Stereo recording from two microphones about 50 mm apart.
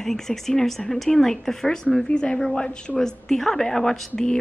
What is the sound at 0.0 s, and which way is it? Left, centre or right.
Speech, centre.